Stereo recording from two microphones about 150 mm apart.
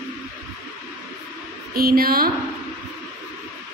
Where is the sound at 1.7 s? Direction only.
90° right.